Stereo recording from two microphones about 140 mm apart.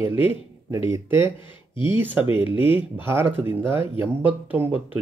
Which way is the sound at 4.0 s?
15° right (ahead or behind).